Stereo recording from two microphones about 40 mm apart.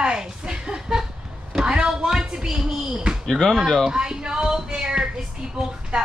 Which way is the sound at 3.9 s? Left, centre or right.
Centre.